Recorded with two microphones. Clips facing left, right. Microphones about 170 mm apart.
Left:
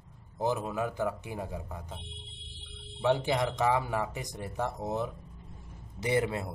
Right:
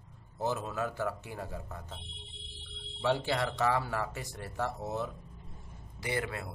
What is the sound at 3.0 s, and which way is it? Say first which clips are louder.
A man's voice: left 3 dB; 15° left (ahead or behind).